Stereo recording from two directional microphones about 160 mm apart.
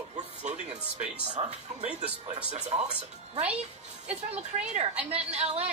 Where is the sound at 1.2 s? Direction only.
45° right (ahead or behind).